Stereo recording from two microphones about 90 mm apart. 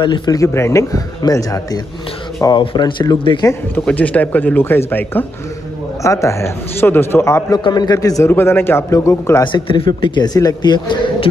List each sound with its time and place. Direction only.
0.0 s a man's voice: 60° left (ahead or behind)
0.4 s a man's voice: 30° left (ahead or behind)
2.5 s a man's voice: 60° left (ahead or behind)
3.8 s speech: 15° left (ahead or behind)
6.0 s a man's voice: 35° left (ahead or behind)
7.5 s a man's voice: 50° left (ahead or behind)
8.3 s speech: 25° left (ahead or behind)
9.4 s a man's voice: 70° left (ahead or behind)
9.8 s a man's voice: 55° left (ahead or behind)